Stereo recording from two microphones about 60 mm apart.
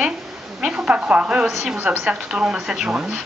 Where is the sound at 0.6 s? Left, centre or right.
Centre.